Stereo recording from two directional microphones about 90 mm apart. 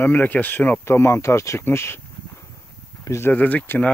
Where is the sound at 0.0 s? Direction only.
20° left (ahead or behind).